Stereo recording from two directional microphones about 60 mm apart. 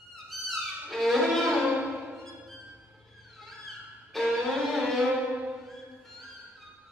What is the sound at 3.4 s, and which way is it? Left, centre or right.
Music, centre.